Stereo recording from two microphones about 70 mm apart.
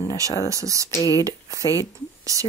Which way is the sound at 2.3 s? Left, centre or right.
Right.